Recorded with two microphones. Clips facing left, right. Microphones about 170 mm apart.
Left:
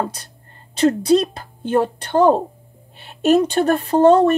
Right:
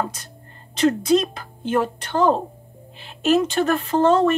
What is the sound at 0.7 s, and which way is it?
A woman's voice, 35° left (ahead or behind).